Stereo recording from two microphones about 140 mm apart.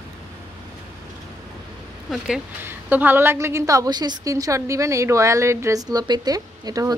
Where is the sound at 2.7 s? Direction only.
15° right (ahead or behind).